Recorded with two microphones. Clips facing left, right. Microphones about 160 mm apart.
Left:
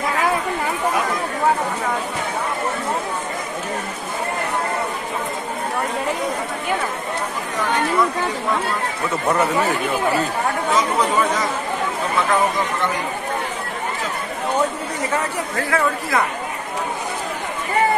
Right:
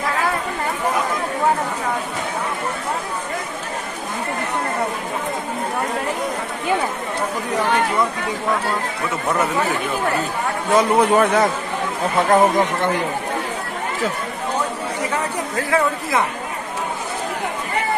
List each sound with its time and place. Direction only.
10.7 s speech: 60° right (ahead or behind)
15.7 s speech: 20° right (ahead or behind)